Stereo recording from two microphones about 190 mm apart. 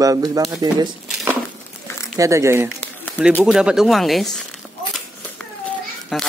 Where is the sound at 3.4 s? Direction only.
5° right (ahead or behind).